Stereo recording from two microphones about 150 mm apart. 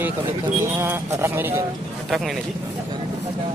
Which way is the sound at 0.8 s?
20° right (ahead or behind).